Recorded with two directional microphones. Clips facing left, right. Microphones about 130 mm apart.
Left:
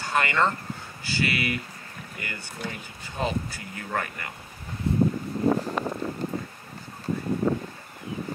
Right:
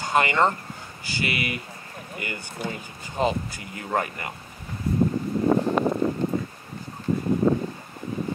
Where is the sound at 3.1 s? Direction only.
20° right (ahead or behind).